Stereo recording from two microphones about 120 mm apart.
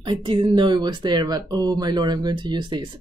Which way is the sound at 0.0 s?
40° right (ahead or behind).